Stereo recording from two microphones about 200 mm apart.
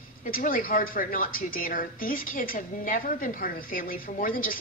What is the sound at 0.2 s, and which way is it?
A woman's voice, 40° left (ahead or behind).